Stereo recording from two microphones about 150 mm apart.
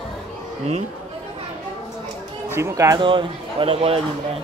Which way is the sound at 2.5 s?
20° right (ahead or behind).